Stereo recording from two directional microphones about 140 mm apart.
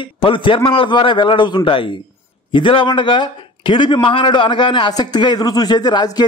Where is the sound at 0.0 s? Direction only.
40° left (ahead or behind).